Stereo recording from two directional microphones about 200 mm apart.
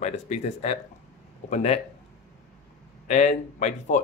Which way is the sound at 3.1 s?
35° left (ahead or behind).